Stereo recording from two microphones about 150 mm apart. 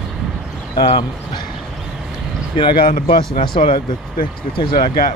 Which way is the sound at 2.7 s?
70° left (ahead or behind).